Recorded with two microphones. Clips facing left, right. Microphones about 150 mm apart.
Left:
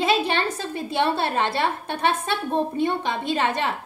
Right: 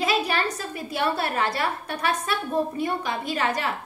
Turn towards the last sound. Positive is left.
turn(degrees=25)  # may be behind; listen again after turning